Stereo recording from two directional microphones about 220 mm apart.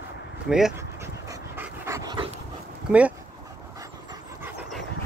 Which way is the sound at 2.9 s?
5° right (ahead or behind).